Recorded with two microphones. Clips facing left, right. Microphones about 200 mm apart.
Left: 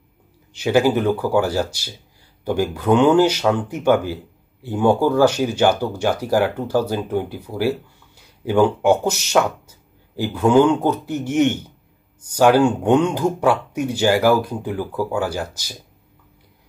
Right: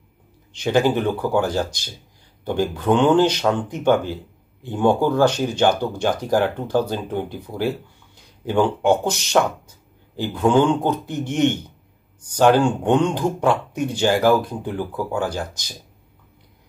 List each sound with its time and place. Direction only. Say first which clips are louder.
0.5 s speech: left 2 dB; 10° left (ahead or behind)